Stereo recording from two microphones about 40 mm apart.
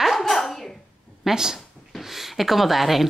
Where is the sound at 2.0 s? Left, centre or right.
Centre.